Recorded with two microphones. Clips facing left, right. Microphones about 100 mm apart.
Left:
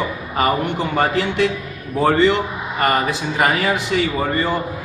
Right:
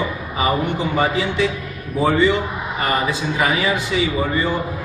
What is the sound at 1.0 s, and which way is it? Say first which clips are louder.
A man's voice: left 2 dB; 60° left (ahead or behind).